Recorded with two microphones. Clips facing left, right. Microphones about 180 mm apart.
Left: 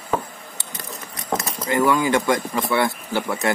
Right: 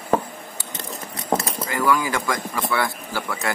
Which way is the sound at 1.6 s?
25° left (ahead or behind).